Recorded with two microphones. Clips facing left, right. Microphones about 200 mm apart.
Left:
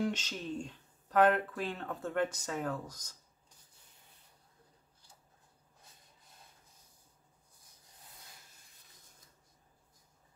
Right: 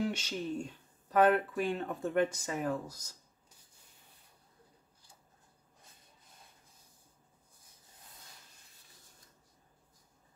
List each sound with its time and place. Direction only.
0.0 s speech: 10° right (ahead or behind)